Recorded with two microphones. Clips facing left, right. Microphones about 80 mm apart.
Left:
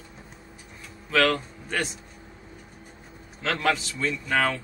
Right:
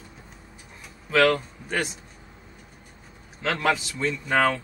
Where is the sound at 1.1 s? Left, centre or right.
Centre.